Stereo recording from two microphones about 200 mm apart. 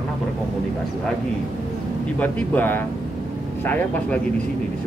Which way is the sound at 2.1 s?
10° left (ahead or behind).